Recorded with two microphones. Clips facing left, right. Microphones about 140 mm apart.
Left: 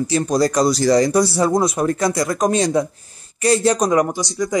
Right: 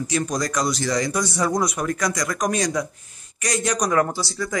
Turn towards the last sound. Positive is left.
turn(degrees=15)  # may be behind; listen again after turning